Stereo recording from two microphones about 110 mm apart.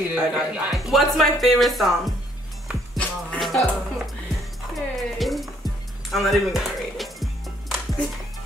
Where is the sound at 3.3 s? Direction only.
Centre (ahead or behind).